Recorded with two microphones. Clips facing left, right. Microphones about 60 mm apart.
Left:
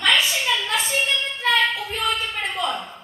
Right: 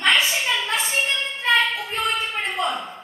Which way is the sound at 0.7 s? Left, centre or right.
Right.